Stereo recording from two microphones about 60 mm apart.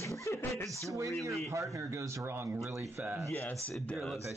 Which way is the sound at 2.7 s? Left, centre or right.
Right.